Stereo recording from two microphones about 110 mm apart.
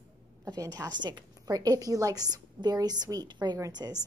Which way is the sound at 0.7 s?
40° right (ahead or behind).